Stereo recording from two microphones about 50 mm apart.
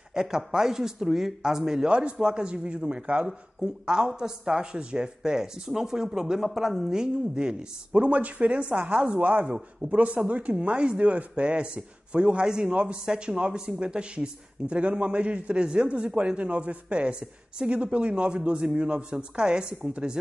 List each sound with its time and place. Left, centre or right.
0.1 s speech: centre
1.9 s speech: right
7.9 s speech: right